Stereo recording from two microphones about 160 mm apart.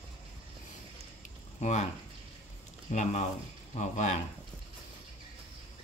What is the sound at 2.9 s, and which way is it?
Speech, 45° left (ahead or behind).